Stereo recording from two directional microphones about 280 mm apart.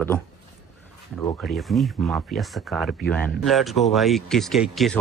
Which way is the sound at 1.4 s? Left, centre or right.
Centre.